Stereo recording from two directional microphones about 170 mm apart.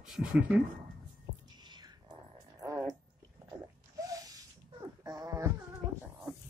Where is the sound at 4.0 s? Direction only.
20° right (ahead or behind).